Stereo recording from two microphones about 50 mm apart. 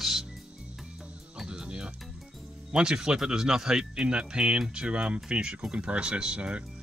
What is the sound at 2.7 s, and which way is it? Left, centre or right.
Speech, centre.